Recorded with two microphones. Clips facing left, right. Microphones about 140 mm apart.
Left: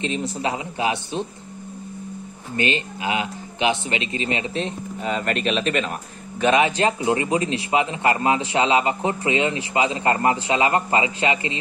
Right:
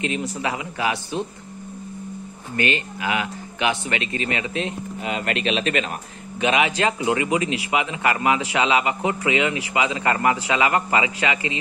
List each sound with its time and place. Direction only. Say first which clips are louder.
0.2 s speech: left 1 dB; 25° left (ahead or behind)
2.5 s a man's voice: even; 20° left (ahead or behind)